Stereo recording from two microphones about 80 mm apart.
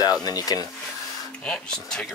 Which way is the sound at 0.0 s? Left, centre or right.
Left.